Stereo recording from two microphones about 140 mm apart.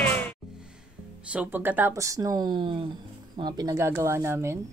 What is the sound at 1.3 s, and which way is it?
A man's voice, 10° right (ahead or behind).